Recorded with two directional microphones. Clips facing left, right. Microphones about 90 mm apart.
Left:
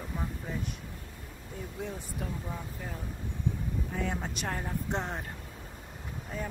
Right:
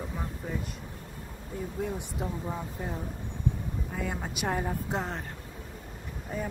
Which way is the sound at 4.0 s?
5° right (ahead or behind).